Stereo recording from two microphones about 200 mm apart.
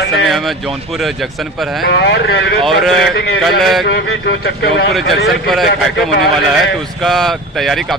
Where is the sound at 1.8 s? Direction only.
55° left (ahead or behind).